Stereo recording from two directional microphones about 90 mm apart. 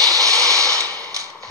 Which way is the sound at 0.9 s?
40° right (ahead or behind).